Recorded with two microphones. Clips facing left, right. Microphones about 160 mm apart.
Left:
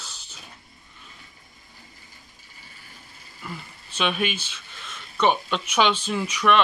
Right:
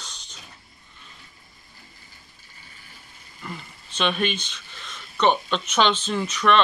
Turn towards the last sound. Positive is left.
turn(degrees=10)  # may be behind; listen again after turning